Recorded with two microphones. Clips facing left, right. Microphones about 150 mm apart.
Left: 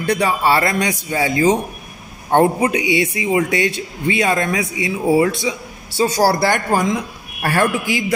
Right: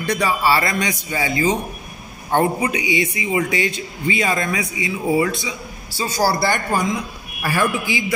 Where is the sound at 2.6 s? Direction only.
65° left (ahead or behind).